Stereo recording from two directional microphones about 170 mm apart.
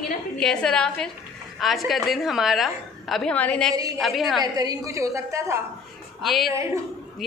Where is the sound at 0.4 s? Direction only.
5° left (ahead or behind).